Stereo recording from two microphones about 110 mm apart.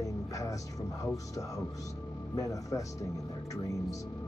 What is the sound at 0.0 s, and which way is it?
Music, 30° left (ahead or behind).